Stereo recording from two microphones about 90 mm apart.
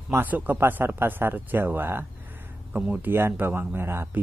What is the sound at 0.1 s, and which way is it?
Speech, 20° right (ahead or behind).